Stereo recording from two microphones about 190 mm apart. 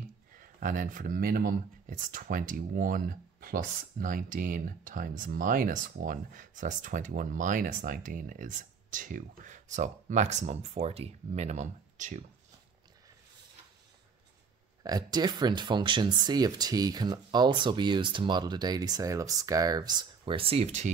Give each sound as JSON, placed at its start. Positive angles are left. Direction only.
{"t": 0.6, "sound": "speech", "side_deg": -45}
{"t": 14.8, "sound": "speech", "side_deg": -20}